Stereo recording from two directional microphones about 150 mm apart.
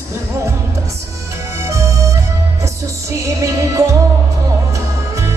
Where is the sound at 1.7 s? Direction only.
20° right (ahead or behind).